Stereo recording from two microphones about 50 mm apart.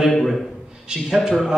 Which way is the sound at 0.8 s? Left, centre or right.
Centre.